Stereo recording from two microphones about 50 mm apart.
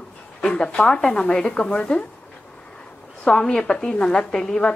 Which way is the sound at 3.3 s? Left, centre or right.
Centre.